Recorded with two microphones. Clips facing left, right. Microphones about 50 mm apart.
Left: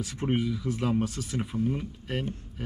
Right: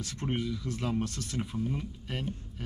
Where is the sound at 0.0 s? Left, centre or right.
Centre.